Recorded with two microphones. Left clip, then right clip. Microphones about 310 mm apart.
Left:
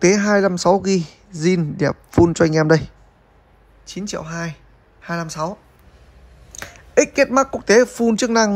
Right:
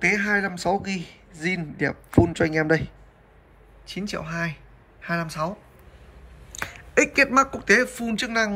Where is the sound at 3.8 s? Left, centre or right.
Centre.